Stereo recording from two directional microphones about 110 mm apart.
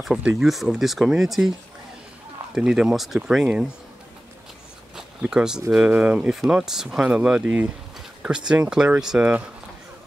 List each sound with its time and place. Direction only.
0.0 s speech: centre (ahead or behind)
2.5 s speech: 5° right (ahead or behind)
4.9 s a sound: 5° right (ahead or behind)
5.7 s speech: 10° right (ahead or behind)